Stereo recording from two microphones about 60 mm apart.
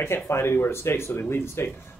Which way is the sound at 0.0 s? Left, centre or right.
Left.